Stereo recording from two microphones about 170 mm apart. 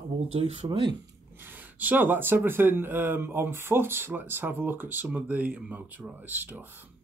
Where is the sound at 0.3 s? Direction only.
35° right (ahead or behind).